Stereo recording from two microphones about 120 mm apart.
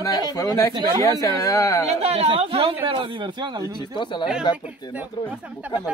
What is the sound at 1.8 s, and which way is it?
Speech, 60° right (ahead or behind).